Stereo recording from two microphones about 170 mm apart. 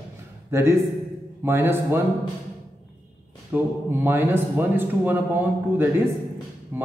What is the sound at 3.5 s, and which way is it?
A man's voice, 10° right (ahead or behind).